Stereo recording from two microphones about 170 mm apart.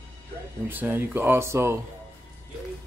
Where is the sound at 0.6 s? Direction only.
10° right (ahead or behind).